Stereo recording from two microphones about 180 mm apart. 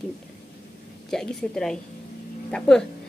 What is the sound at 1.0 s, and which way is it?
A woman's voice, 5° left (ahead or behind).